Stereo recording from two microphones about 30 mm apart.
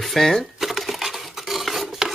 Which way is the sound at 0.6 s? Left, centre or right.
Centre.